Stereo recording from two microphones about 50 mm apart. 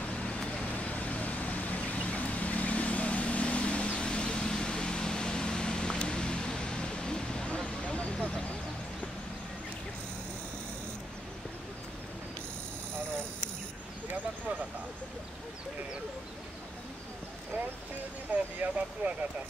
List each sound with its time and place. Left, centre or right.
0.1 s vehicle: left
18.3 s vehicle: right